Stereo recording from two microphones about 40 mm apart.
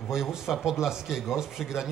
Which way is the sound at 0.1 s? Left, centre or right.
Centre.